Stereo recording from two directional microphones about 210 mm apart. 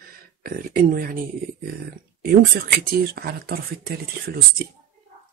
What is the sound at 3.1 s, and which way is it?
Speech, 50° right (ahead or behind).